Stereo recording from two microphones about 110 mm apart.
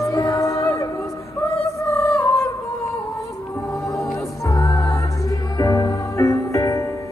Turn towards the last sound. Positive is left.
turn(degrees=30)  # may be behind; listen again after turning